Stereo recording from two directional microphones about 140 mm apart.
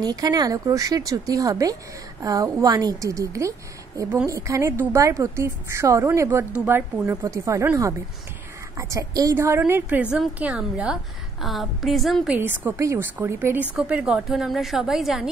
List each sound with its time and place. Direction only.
0.0 s a woman's voice: 25° right (ahead or behind); by 12.4 s centre (ahead or behind)
12.4 s a woman's voice: 15° right (ahead or behind)
13.7 s a woman's voice: 5° right (ahead or behind)